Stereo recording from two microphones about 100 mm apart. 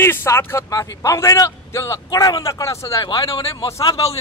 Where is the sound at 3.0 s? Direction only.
55° left (ahead or behind).